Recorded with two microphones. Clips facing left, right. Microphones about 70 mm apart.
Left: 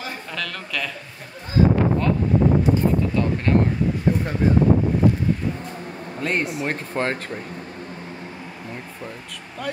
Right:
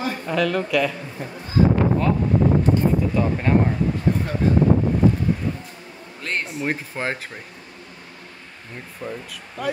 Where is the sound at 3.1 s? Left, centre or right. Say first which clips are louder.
Right 1 dB; centre.